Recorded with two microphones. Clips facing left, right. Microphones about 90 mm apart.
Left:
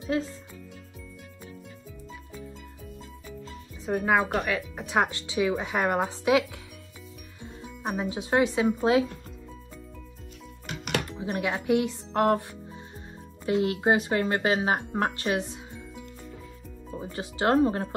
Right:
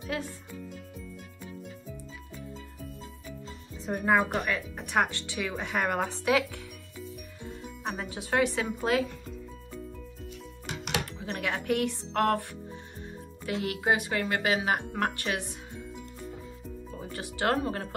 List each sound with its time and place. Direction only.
0.1 s speech: 30° left (ahead or behind)
3.8 s speech: centre (ahead or behind)
8.0 s speech: 20° left (ahead or behind)
11.1 s speech: 15° left (ahead or behind)
13.5 s speech: 25° left (ahead or behind)
17.1 s speech: 25° left (ahead or behind)